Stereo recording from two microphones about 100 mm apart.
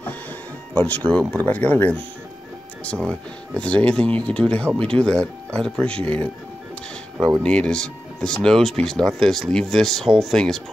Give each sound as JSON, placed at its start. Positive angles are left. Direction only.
{"t": 0.7, "sound": "speech", "side_deg": 15}
{"t": 7.4, "sound": "speech", "side_deg": 10}